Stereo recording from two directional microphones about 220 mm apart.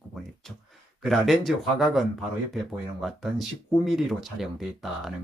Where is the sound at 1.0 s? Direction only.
Centre (ahead or behind).